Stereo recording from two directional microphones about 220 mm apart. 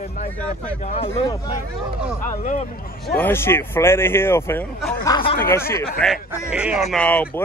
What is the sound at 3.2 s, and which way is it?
A man's voice, 10° left (ahead or behind).